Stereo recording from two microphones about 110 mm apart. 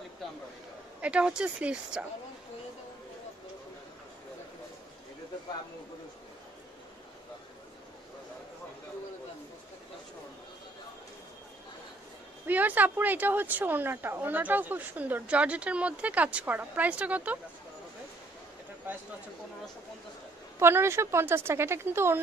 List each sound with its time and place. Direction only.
1.0 s speech: 10° right (ahead or behind)
12.4 s speech: 15° right (ahead or behind)
20.5 s a woman's voice: 20° right (ahead or behind)